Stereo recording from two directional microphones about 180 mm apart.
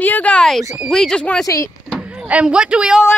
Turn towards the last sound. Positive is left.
turn(degrees=-5)  # may be behind; listen again after turning